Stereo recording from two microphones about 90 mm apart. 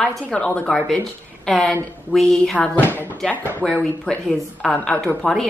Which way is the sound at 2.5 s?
15° left (ahead or behind).